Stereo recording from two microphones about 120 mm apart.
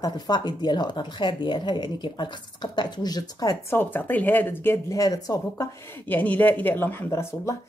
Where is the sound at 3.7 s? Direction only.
15° left (ahead or behind).